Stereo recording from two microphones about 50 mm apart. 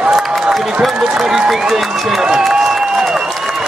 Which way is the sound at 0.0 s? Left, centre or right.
Centre.